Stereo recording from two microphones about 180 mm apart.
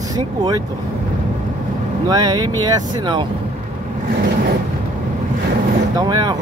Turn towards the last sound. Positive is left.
turn(degrees=-20)  # may be behind; listen again after turning